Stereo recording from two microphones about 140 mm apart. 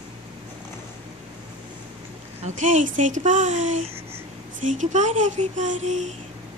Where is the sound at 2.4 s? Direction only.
60° right (ahead or behind).